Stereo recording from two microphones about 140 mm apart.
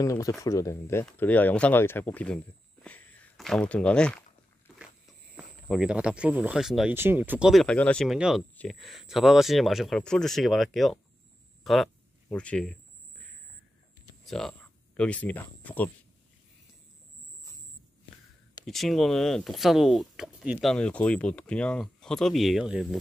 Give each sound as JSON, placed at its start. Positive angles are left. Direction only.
{"t": 0.0, "sound": "speech", "side_deg": 25}
{"t": 5.3, "sound": "speech", "side_deg": -5}
{"t": 6.9, "sound": "speech", "side_deg": -15}
{"t": 7.6, "sound": "speech", "side_deg": 10}
{"t": 8.1, "sound": "speech", "side_deg": -5}
{"t": 11.6, "sound": "a sound", "side_deg": 0}
{"t": 14.2, "sound": "speech", "side_deg": 5}
{"t": 18.7, "sound": "speech", "side_deg": 0}